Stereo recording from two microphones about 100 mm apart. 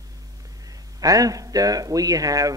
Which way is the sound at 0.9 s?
35° right (ahead or behind).